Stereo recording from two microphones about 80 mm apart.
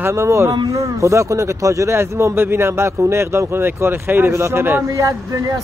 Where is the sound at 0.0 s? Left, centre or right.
Right.